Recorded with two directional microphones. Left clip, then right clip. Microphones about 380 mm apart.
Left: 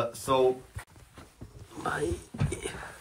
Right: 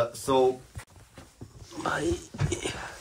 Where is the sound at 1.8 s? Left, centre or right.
Centre.